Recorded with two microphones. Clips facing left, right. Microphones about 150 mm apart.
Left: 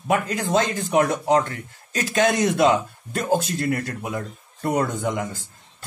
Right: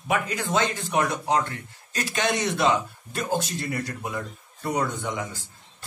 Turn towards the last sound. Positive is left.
turn(degrees=50)  # may be behind; listen again after turning